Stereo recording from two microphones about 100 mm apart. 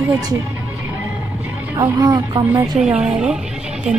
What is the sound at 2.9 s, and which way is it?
Speech, 10° right (ahead or behind).